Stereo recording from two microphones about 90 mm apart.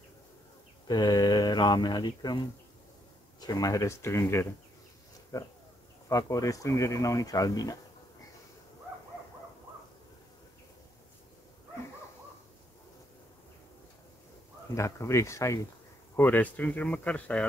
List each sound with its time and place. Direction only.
0.8 s speech: 50° left (ahead or behind)
14.7 s speech: 35° left (ahead or behind)
16.2 s speech: 20° left (ahead or behind)